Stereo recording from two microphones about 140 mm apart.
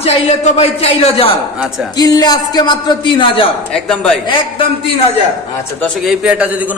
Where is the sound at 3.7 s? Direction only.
5° left (ahead or behind).